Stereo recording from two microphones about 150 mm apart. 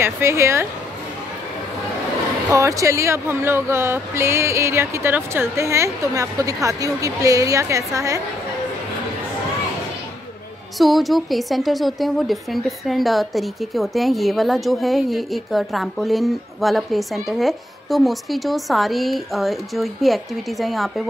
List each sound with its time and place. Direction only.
0.0 s speech: 15° right (ahead or behind)
2.5 s speech: 20° right (ahead or behind)
10.8 s a woman's voice: centre (ahead or behind)